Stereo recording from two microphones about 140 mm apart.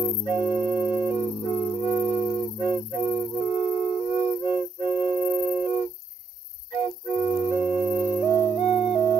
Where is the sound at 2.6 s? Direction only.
20° right (ahead or behind).